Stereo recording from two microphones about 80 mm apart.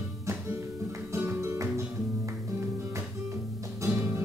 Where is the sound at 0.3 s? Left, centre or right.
Right.